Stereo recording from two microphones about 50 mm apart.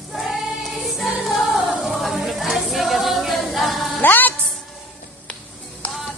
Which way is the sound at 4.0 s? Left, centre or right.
Left.